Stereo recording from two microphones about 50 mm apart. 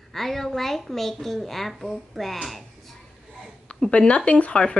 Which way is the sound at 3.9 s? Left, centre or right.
Left.